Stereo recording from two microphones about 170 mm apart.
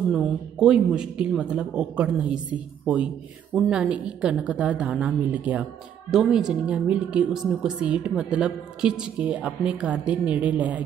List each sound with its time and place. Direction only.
0.1 s a woman's voice: centre (ahead or behind)